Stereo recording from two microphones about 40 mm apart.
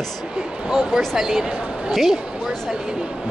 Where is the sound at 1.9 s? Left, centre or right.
Centre.